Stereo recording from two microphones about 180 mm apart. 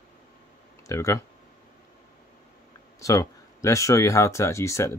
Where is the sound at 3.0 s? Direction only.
15° left (ahead or behind).